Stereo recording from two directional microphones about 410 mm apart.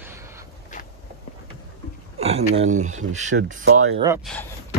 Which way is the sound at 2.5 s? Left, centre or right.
Centre.